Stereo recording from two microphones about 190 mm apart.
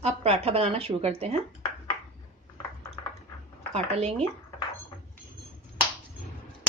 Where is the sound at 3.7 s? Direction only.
35° right (ahead or behind).